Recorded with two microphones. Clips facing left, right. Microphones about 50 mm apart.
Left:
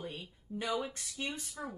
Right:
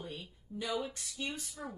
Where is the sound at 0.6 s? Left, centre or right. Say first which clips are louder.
Left 1 dB; left.